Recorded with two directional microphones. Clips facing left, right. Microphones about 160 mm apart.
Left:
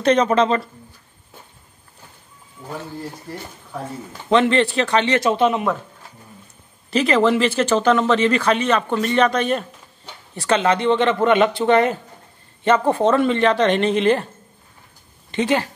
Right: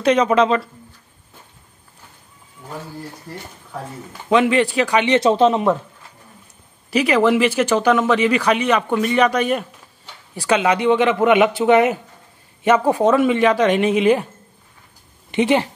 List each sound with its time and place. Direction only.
0.0 s speech: 10° right (ahead or behind)
4.3 s speech: 10° right (ahead or behind)
5.2 s speech: 30° right (ahead or behind)
6.9 s speech: 10° right (ahead or behind)
15.3 s speech: 20° right (ahead or behind)